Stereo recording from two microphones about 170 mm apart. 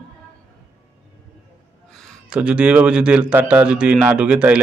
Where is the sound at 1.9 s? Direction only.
5° right (ahead or behind).